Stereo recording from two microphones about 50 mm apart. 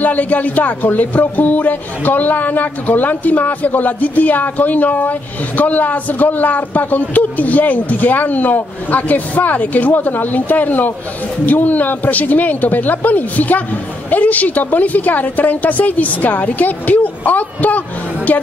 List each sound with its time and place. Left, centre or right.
0.0 s a man's voice: left